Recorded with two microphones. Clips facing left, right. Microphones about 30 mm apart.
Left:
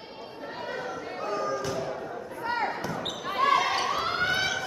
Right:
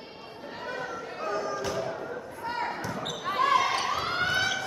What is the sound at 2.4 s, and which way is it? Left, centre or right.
Basketball bounce, centre.